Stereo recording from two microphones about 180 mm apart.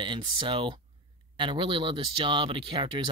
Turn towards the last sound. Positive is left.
turn(degrees=-25)  # may be behind; listen again after turning